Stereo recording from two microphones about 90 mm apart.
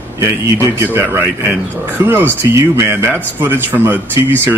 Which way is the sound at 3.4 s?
20° right (ahead or behind).